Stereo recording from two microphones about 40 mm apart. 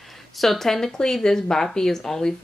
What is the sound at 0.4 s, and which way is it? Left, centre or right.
A woman's voice, centre.